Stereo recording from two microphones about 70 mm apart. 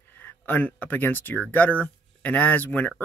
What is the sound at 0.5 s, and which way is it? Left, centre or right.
Speech, left.